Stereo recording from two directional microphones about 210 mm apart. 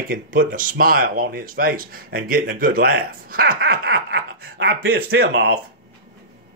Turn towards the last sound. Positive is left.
turn(degrees=-50)  # may be behind; listen again after turning